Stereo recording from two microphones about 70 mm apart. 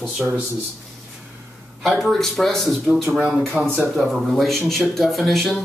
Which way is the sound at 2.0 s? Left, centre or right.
Centre.